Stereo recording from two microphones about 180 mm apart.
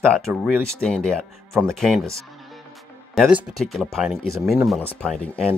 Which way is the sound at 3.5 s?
Centre (ahead or behind).